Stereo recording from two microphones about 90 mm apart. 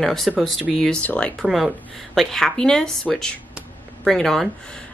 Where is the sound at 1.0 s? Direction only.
15° left (ahead or behind).